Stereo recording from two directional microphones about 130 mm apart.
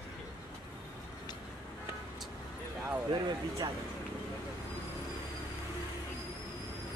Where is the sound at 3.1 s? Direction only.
35° right (ahead or behind).